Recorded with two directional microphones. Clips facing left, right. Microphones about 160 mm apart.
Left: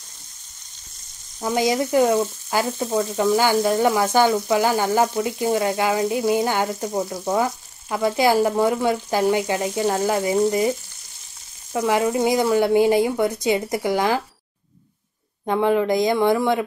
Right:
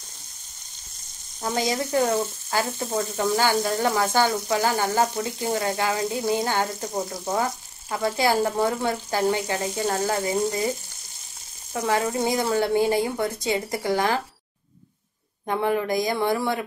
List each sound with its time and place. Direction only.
1.4 s frying: 15° left (ahead or behind)
11.7 s frying: 15° left (ahead or behind)
15.4 s speech: 20° left (ahead or behind)